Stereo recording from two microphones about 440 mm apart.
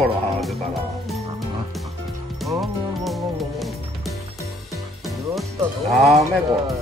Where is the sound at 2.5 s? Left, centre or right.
Centre.